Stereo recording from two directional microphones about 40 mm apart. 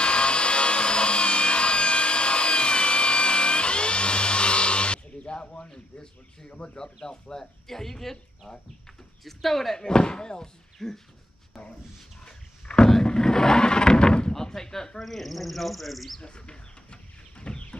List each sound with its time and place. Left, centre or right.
0.0 s wood: left
6.5 s speech: left
6.8 s speech: centre
9.2 s speech: centre
9.8 s speech: centre
10.8 s speech: centre
12.6 s a sound: centre
14.3 s a sound: centre
15.0 s speech: centre
16.2 s bird: left